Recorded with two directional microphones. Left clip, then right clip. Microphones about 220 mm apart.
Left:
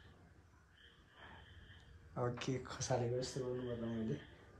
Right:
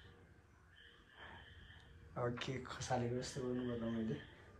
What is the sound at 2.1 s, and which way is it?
Speech, 20° left (ahead or behind).